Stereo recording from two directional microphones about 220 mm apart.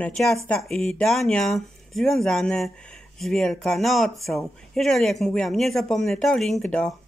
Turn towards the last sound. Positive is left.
turn(degrees=5)  # may be behind; listen again after turning